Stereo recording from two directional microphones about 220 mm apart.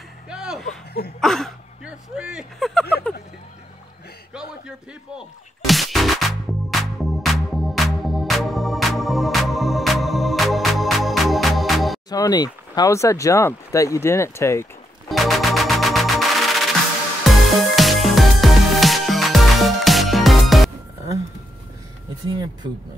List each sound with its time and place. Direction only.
0.3 s music: 5° right (ahead or behind)
0.7 s a sound: 45° left (ahead or behind)
1.2 s speech: centre (ahead or behind)
2.1 s a sound: 5° right (ahead or behind)
4.3 s music: 5° right (ahead or behind)
12.1 s speech: 15° left (ahead or behind)
15.0 s music: centre (ahead or behind)